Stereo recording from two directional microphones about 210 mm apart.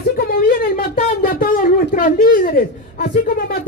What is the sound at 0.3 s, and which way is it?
Speech, 45° left (ahead or behind).